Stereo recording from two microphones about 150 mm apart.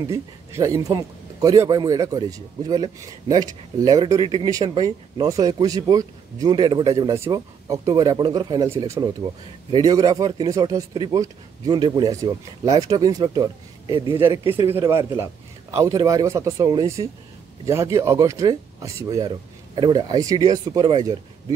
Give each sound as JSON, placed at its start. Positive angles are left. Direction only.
{"t": 0.0, "sound": "a man's voice", "side_deg": -20}
{"t": 14.5, "sound": "a man's voice", "side_deg": -15}